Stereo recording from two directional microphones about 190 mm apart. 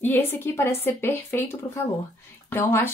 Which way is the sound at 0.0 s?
10° left (ahead or behind).